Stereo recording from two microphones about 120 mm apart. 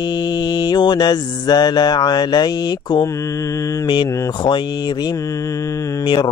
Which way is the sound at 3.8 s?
40° left (ahead or behind).